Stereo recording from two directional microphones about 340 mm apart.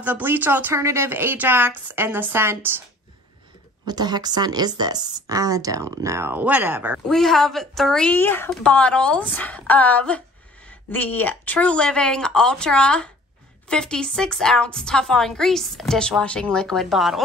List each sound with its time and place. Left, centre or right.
0.0 s speech: centre
3.8 s speech: centre